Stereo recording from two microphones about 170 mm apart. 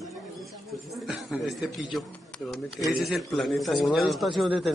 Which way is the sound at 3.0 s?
Centre (ahead or behind).